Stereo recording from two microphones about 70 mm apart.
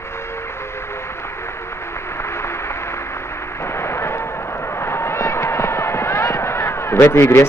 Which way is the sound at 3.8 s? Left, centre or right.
Left.